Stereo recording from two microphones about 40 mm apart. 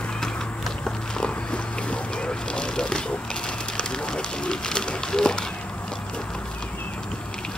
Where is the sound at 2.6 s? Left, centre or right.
Left.